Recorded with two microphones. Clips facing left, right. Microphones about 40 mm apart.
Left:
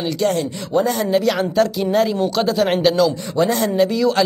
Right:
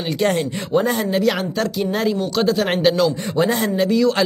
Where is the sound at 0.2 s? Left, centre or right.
Right.